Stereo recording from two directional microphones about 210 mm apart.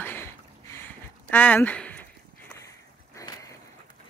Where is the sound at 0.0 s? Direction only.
10° left (ahead or behind).